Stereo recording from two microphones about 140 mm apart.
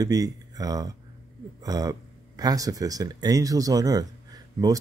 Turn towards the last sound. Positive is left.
turn(degrees=-25)  # may be behind; listen again after turning